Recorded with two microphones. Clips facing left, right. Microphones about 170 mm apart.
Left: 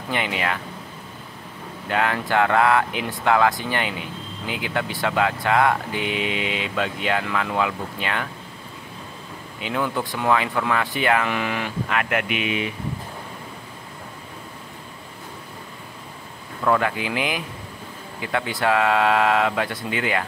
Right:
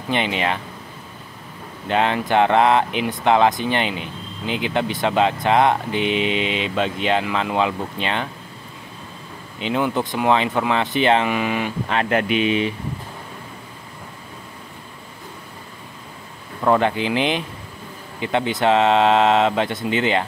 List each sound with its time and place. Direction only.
0.1 s speech: 20° right (ahead or behind)
1.9 s speech: 20° right (ahead or behind)
9.6 s speech: 20° right (ahead or behind)
11.9 s speech: 30° right (ahead or behind)
16.6 s speech: 30° right (ahead or behind)